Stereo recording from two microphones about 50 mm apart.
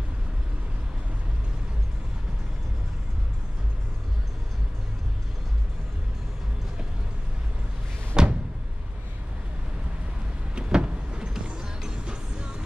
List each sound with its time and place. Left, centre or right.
8.2 s vehicle: centre
10.5 s vehicle: centre